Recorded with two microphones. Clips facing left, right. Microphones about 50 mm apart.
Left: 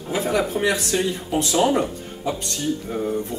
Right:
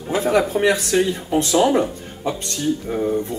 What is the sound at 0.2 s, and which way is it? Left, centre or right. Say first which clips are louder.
Speech: right 4 dB; right.